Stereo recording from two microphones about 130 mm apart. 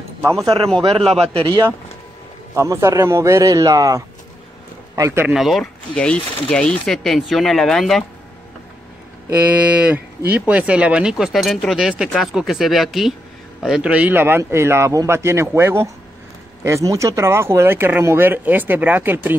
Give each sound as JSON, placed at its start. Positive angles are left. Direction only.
{"t": 1.2, "sound": "speech", "side_deg": -40}
{"t": 2.5, "sound": "a man's voice", "side_deg": -20}
{"t": 5.3, "sound": "speech", "side_deg": 0}
{"t": 9.7, "sound": "speech", "side_deg": -10}